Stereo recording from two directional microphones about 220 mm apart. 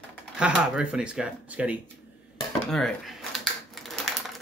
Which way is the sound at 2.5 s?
Centre (ahead or behind).